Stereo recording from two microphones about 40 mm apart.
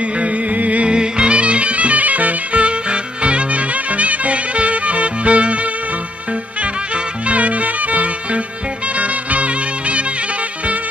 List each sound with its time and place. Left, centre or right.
0.2 s music: right
0.8 s music: right
7.2 s music: right